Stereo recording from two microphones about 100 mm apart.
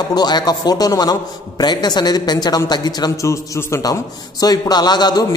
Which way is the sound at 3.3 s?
25° left (ahead or behind).